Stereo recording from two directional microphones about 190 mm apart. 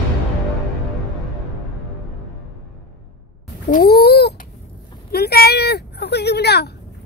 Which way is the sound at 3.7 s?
55° left (ahead or behind).